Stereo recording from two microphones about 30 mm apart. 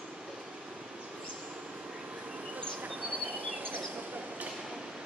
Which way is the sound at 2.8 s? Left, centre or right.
Right.